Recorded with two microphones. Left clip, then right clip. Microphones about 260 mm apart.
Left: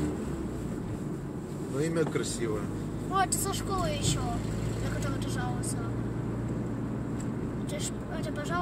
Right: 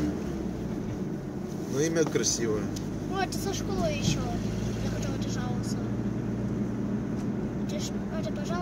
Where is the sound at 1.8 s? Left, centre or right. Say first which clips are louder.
Right 3 dB; right.